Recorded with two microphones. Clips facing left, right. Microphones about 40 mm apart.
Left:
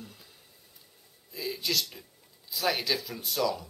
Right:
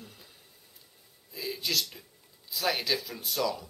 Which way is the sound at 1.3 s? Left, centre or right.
Centre.